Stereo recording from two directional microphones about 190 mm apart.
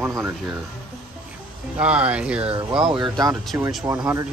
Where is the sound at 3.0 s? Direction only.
20° right (ahead or behind).